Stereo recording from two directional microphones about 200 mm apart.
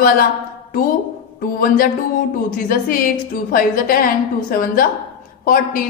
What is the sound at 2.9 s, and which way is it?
A woman's voice, 45° left (ahead or behind).